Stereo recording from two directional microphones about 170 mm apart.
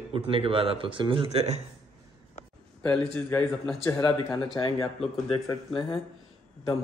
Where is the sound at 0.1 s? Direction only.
35° right (ahead or behind).